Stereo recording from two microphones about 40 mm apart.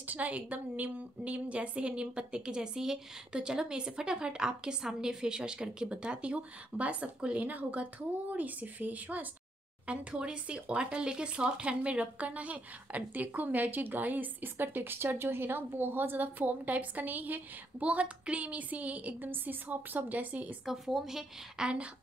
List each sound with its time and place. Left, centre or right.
0.0 s a woman's voice: right
7.4 s speech: right
9.8 s speech: right
17.8 s speech: right
19.2 s speech: right
20.6 s a woman's voice: centre